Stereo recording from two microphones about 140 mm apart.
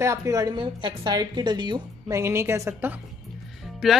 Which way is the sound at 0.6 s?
35° right (ahead or behind).